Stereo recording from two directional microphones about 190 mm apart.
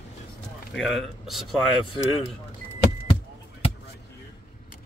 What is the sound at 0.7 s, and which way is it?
Speech, centre (ahead or behind).